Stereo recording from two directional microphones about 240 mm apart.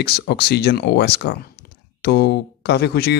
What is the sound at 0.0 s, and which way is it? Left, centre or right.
Speech, left.